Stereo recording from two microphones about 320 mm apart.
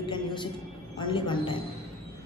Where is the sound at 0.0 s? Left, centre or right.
Centre.